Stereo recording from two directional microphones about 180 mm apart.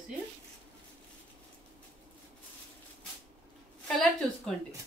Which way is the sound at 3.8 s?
Centre (ahead or behind).